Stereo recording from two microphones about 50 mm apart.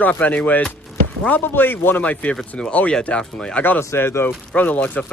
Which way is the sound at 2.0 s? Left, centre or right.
Left.